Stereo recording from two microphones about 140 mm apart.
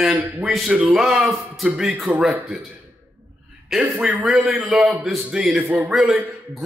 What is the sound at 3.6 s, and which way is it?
A man's voice, 5° right (ahead or behind).